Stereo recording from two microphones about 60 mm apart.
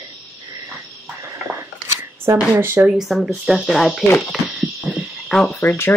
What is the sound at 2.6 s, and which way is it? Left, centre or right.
Speech, right.